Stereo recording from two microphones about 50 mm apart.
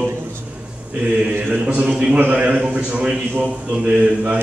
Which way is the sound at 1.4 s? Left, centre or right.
Right.